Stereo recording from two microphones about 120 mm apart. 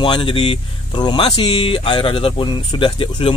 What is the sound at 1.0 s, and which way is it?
Speech, 35° left (ahead or behind).